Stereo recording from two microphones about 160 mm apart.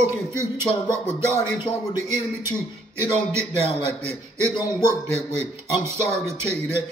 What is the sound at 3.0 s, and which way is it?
A man's voice, 15° right (ahead or behind).